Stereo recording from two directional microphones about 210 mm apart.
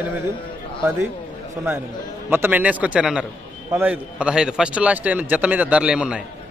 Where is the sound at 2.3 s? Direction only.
10° right (ahead or behind).